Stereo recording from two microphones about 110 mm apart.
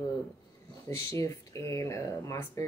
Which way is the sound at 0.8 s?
25° left (ahead or behind).